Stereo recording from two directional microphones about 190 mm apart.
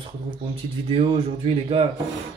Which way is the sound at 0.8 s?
30° right (ahead or behind).